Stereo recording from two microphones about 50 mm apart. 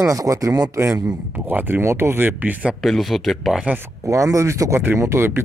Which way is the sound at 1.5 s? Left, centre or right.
Right.